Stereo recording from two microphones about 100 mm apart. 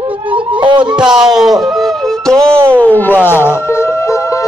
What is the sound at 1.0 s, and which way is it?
Speech, 5° right (ahead or behind).